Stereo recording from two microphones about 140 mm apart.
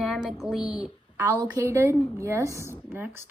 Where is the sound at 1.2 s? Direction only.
25° right (ahead or behind).